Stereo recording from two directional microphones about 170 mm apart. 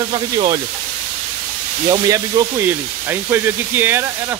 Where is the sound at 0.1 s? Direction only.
25° right (ahead or behind).